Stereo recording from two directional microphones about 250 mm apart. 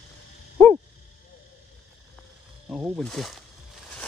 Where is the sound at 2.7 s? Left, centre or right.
Centre.